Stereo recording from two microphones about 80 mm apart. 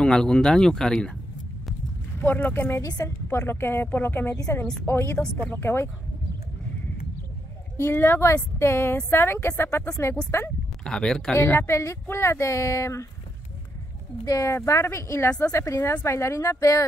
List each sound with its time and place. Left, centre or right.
0.0 s speech: centre
2.1 s speech: left
3.3 s speech: left
7.7 s speech: left
9.8 s speech: left
10.8 s speech: centre
11.4 s speech: left
11.7 s speech: left
14.2 s speech: left